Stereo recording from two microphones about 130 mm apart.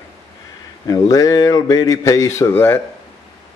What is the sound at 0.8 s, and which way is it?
A man's voice, 25° left (ahead or behind).